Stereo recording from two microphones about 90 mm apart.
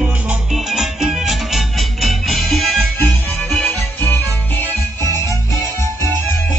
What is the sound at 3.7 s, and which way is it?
Music, 20° left (ahead or behind).